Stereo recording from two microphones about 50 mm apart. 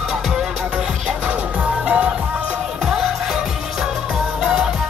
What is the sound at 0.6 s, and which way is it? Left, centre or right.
Music, centre.